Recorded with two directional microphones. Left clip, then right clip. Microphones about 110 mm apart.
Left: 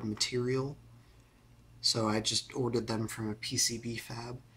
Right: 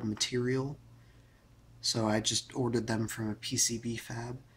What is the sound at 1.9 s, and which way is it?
Speech, 20° right (ahead or behind).